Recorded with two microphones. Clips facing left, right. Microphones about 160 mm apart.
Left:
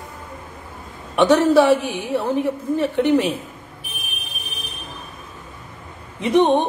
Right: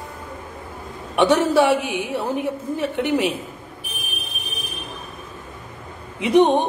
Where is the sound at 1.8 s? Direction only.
65° right (ahead or behind).